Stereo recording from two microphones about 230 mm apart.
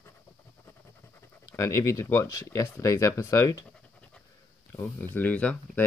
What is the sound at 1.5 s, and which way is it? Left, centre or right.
Speech, centre.